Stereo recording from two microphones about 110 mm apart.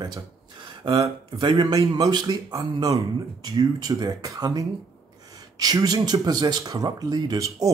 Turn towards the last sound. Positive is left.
turn(degrees=-30)  # may be behind; listen again after turning